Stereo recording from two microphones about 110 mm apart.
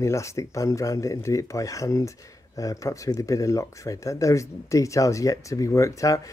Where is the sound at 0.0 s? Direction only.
25° left (ahead or behind).